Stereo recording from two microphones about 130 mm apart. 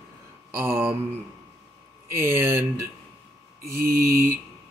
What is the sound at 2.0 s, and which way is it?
Speech, 20° right (ahead or behind).